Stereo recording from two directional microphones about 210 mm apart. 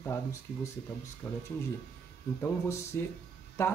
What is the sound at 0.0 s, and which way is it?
Speech, 10° left (ahead or behind).